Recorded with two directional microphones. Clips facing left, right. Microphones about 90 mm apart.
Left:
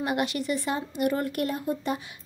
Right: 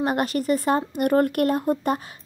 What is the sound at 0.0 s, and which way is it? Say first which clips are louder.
Speech: right 4 dB; 40° right (ahead or behind).